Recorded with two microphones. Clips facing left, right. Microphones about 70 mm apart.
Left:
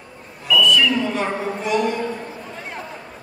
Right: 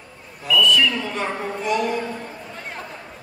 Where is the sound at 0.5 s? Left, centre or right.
Centre.